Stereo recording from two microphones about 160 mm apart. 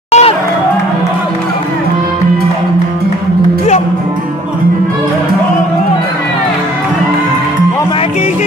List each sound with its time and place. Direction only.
0.1 s music: 40° left (ahead or behind)